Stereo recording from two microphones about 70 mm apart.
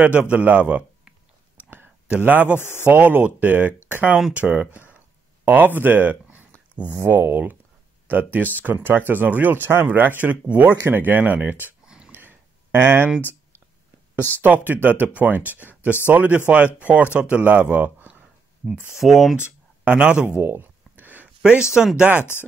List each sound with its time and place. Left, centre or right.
0.0 s speech: right
2.0 s speech: right
12.1 s a sound: right
14.4 s speech: right
18.9 s speech: centre
19.4 s speech: centre
20.2 s a sound: right
21.4 s speech: centre